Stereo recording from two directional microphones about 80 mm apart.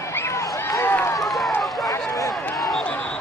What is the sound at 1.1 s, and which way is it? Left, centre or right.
Run, centre.